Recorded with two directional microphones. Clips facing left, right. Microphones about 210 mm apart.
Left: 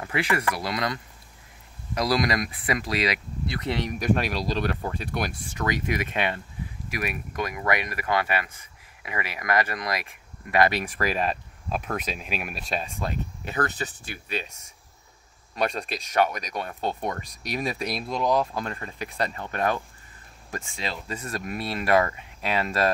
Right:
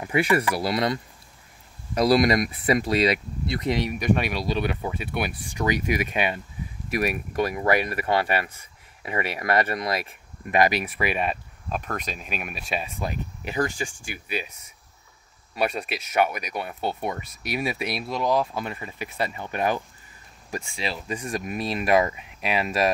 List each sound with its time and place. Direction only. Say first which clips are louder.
0.0 s speech: right 4 dB; 25° right (ahead or behind)
3.7 s speech: right 1 dB; 10° right (ahead or behind)
7.0 s speech: right 6 dB; 35° right (ahead or behind)
10.5 s speech: right 1 dB; 15° right (ahead or behind)
15.5 s speech: right 1 dB; 5° right (ahead or behind)